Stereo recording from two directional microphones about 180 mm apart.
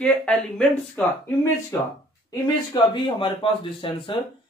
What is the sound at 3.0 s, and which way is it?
Speech, 30° left (ahead or behind).